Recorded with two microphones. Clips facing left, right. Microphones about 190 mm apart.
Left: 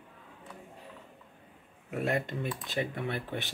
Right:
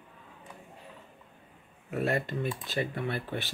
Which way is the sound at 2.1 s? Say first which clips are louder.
Right 1 dB; 20° left (ahead or behind).